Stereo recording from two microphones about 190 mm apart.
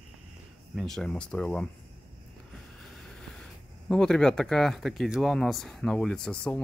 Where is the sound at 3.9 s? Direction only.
5° left (ahead or behind).